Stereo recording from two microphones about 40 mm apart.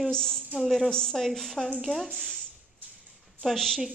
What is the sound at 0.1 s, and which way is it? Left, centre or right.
Speech, centre.